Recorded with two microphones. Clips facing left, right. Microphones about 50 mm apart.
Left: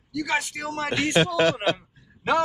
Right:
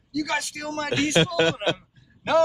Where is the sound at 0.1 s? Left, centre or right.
Centre.